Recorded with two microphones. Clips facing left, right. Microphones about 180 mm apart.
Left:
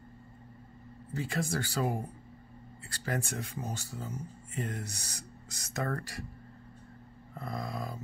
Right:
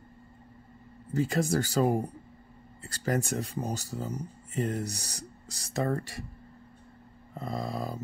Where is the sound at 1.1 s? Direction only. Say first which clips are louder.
Right 7 dB; 40° right (ahead or behind); by 6.2 s 25° right (ahead or behind).